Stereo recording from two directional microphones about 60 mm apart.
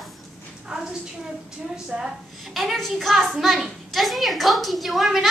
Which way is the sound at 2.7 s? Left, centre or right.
Centre.